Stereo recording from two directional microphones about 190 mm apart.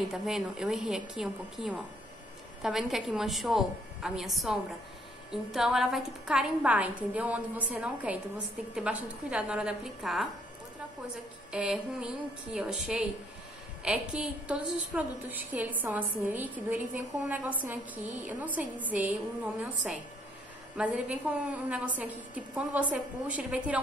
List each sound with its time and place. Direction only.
0.1 s a woman's voice: 5° right (ahead or behind)
11.5 s a woman's voice: 5° right (ahead or behind)